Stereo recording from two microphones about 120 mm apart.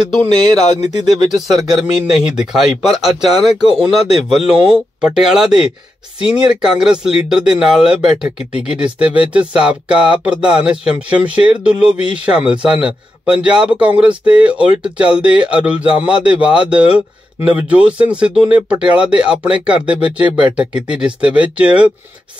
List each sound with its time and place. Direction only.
0.5 s speech: 35° right (ahead or behind)
2.0 s speech: 5° right (ahead or behind)
3.6 s speech: 60° left (ahead or behind)
5.0 s speech: 5° right (ahead or behind)